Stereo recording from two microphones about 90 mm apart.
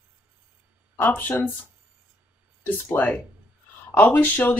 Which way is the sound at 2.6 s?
25° left (ahead or behind).